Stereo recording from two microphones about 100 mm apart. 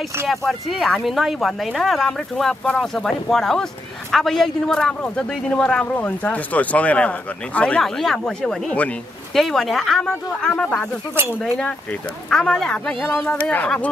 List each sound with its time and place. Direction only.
0.3 s a man's voice: centre (ahead or behind); by 13.7 s 15° left (ahead or behind)